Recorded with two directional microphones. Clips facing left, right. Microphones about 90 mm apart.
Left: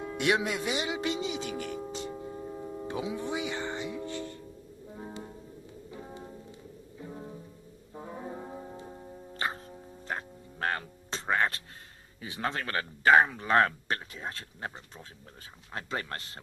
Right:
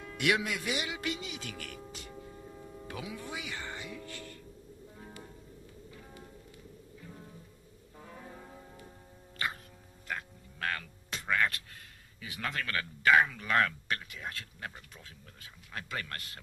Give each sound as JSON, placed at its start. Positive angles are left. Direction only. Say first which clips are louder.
{"t": 0.0, "sound": "a man's voice", "louder": "left 3 dB", "side_deg": 25}
{"t": 4.9, "sound": "music", "louder": "left 9 dB", "side_deg": 25}
{"t": 12.2, "sound": "speech", "louder": "left 4 dB", "side_deg": 30}
{"t": 15.7, "sound": "speech", "louder": "left 4 dB", "side_deg": 30}